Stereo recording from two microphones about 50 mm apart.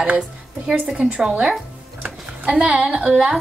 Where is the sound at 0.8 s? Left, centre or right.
Right.